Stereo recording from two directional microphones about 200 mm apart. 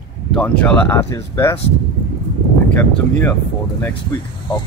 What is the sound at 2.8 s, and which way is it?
Speech, 10° left (ahead or behind).